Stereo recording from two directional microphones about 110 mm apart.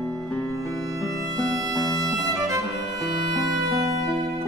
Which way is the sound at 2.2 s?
35° right (ahead or behind).